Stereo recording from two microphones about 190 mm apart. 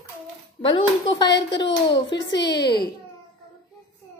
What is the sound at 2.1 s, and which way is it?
Speech, 65° left (ahead or behind).